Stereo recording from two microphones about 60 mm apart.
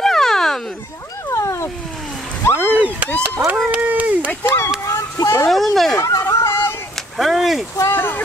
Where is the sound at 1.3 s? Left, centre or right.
Left.